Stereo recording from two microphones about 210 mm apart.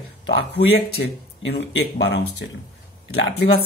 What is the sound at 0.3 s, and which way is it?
Speech, 55° left (ahead or behind).